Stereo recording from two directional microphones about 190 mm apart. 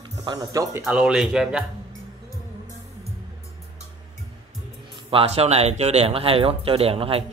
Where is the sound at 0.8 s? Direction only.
5° right (ahead or behind).